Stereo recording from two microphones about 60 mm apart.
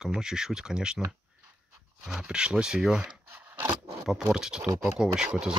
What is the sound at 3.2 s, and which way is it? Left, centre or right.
Scrape, right.